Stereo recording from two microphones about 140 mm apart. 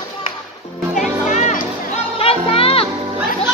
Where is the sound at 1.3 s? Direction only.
60° left (ahead or behind).